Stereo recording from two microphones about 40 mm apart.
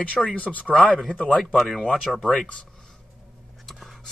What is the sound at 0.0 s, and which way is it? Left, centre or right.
Speech, left.